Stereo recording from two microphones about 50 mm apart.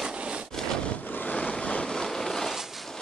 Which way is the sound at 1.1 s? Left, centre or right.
Left.